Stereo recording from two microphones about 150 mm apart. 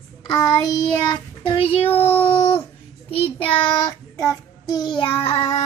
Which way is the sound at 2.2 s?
40° left (ahead or behind).